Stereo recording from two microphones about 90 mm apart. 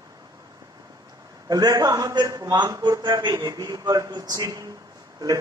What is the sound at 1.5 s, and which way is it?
A man's voice, 45° right (ahead or behind).